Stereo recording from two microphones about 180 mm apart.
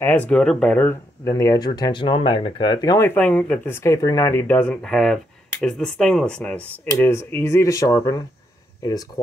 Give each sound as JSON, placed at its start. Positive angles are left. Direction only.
{"t": 0.0, "sound": "speech", "side_deg": 10}